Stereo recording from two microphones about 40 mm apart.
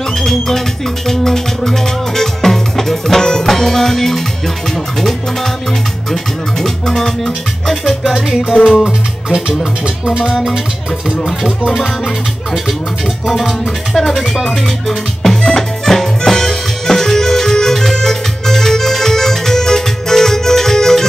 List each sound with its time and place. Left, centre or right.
0.2 s music: centre
1.0 s speech: centre
6.6 s music: centre
8.8 s music: centre
10.3 s speech: centre
13.3 s music: centre